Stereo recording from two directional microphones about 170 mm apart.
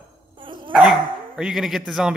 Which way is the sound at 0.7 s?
Centre (ahead or behind).